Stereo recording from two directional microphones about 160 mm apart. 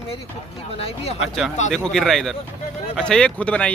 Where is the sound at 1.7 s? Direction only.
5° left (ahead or behind).